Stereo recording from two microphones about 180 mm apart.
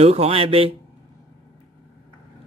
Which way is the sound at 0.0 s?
35° right (ahead or behind).